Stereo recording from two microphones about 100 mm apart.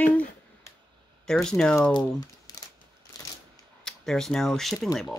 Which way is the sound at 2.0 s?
40° left (ahead or behind).